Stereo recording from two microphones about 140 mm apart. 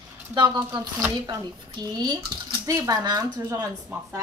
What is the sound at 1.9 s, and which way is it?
Speech, 30° right (ahead or behind).